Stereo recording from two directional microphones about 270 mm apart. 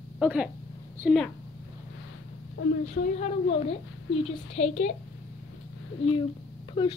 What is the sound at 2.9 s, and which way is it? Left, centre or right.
A woman's voice, left.